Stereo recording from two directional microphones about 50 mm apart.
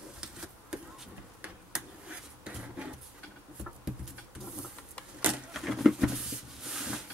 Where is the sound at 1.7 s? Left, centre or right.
Centre.